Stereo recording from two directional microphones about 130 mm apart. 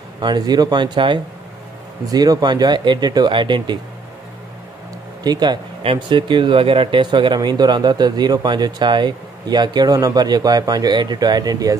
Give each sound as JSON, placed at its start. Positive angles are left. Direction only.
{"t": 0.2, "sound": "speech", "side_deg": -35}
{"t": 5.2, "sound": "speech", "side_deg": -30}